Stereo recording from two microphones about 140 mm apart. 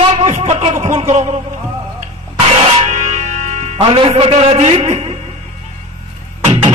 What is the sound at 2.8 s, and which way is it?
Music, 55° right (ahead or behind).